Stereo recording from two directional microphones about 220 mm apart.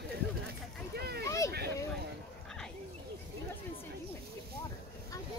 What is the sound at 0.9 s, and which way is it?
Speech, 45° right (ahead or behind).